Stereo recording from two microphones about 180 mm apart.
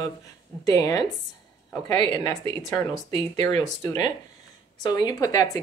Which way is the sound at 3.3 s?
20° left (ahead or behind).